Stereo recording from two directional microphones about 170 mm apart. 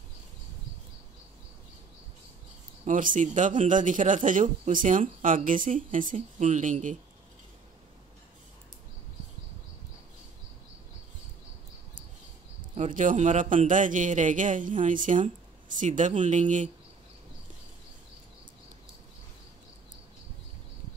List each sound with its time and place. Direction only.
2.8 s a man's voice: 50° right (ahead or behind)
12.7 s a man's voice: 45° right (ahead or behind)